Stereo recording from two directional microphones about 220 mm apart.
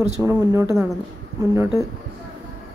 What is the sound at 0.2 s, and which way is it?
Speech, 10° right (ahead or behind).